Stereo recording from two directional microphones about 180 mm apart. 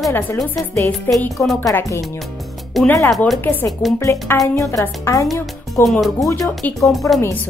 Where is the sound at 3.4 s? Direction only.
15° left (ahead or behind).